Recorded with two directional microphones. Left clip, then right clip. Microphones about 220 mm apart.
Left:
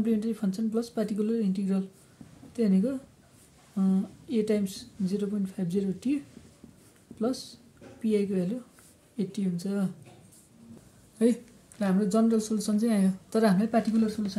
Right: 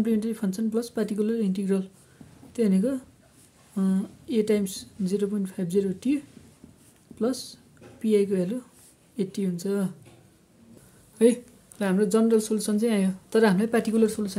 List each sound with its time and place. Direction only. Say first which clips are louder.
0.0 s a woman's voice: right 2 dB; 35° right (ahead or behind)
11.2 s speech: right 6 dB; 25° right (ahead or behind); by 14.2 s 45° right (ahead or behind)